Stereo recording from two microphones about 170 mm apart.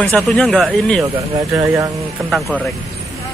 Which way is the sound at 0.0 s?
5° left (ahead or behind).